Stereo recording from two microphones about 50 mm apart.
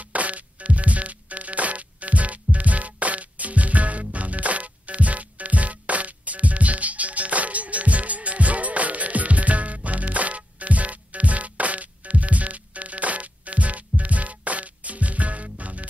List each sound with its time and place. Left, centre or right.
0.1 s music: right